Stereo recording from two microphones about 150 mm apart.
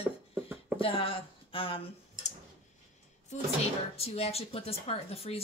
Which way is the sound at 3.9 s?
45° left (ahead or behind).